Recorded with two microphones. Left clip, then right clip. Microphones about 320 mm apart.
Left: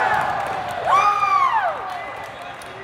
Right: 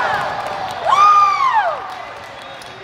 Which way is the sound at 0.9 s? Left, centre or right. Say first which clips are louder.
Right 6 dB; right.